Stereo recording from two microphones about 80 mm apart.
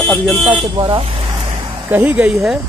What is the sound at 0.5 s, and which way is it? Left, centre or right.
Speech, right.